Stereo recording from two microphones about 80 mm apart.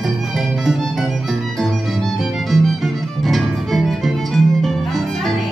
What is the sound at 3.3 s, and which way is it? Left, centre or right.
Music, centre.